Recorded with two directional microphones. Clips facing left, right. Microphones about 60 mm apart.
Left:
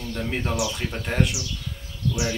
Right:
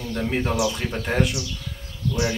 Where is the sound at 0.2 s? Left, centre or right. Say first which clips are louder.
Right 3 dB; centre.